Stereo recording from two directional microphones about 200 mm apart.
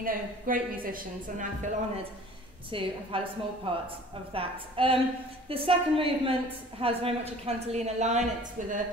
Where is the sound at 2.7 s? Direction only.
25° right (ahead or behind).